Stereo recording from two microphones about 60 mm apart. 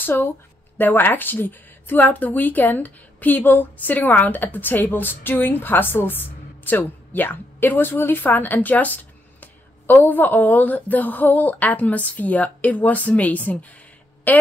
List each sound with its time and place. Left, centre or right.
0.0 s a woman's voice: left